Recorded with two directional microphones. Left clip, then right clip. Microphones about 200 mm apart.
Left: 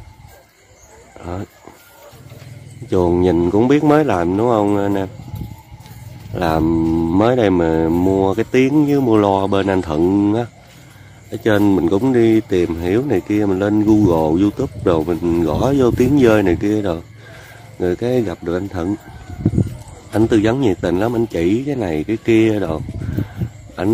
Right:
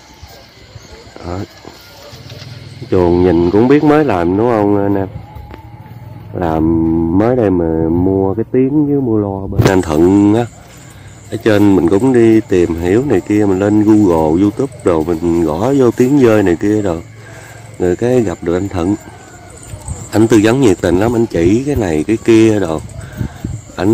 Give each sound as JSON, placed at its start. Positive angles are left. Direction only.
{"t": 1.2, "sound": "speech", "side_deg": 10}
{"t": 2.9, "sound": "speech", "side_deg": 10}
{"t": 6.3, "sound": "speech", "side_deg": 25}
{"t": 9.0, "sound": "speech", "side_deg": 35}
{"t": 9.7, "sound": "speech", "side_deg": -5}
{"t": 20.1, "sound": "speech", "side_deg": 0}